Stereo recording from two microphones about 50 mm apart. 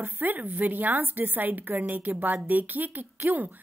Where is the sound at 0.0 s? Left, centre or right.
Right.